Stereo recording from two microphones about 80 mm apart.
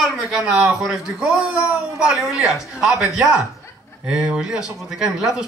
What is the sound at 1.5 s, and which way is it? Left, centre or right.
Speech, centre.